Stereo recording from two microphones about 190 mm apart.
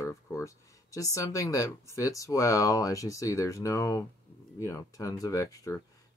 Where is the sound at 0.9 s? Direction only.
15° left (ahead or behind).